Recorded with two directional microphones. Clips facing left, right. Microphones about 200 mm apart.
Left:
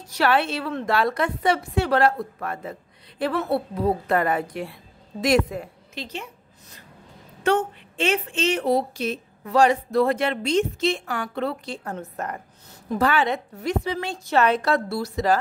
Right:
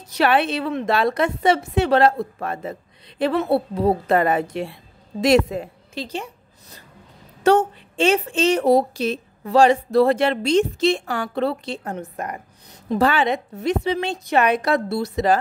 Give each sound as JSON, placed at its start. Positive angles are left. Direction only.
{"t": 0.1, "sound": "a woman's voice", "side_deg": -20}
{"t": 7.4, "sound": "a woman's voice", "side_deg": -35}
{"t": 12.9, "sound": "a woman's voice", "side_deg": -25}